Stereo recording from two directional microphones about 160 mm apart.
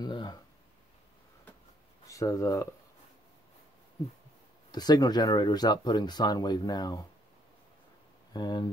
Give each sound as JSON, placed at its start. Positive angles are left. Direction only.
{"t": 0.0, "sound": "speech", "side_deg": 25}
{"t": 2.0, "sound": "speech", "side_deg": 20}
{"t": 4.6, "sound": "speech", "side_deg": 25}
{"t": 8.3, "sound": "speech", "side_deg": 25}